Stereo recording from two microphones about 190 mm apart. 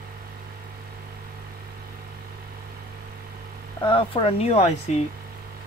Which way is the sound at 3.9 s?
25° left (ahead or behind).